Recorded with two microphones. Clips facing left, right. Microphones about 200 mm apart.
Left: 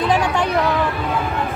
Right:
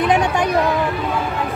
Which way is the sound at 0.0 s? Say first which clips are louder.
Right 1 dB; 20° right (ahead or behind).